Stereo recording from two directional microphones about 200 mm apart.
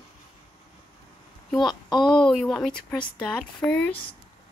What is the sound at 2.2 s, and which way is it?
Speech, centre (ahead or behind).